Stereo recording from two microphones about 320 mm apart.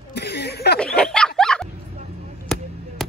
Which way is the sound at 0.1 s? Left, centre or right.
Left.